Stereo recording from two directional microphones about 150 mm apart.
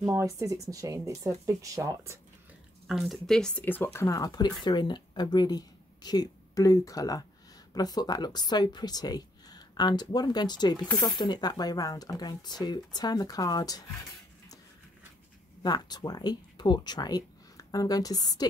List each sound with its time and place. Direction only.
0.0 s speech: 20° right (ahead or behind)
2.9 s a woman's voice: centre (ahead or behind); by 13.8 s 25° left (ahead or behind)
15.6 s speech: 25° left (ahead or behind)